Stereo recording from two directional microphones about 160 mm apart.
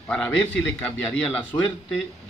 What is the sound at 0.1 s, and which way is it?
Speech, 5° left (ahead or behind).